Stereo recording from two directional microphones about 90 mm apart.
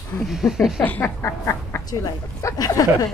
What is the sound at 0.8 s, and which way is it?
Quack, 20° left (ahead or behind).